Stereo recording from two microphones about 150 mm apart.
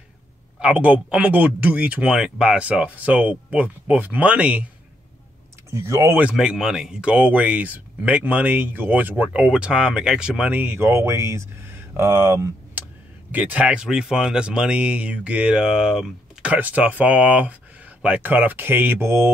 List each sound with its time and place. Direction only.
0.6 s speech: 10° right (ahead or behind)
5.7 s speech: 20° right (ahead or behind)
6.2 s speech: 5° right (ahead or behind)